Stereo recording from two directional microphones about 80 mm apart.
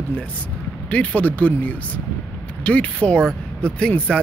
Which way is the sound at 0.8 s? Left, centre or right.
Centre.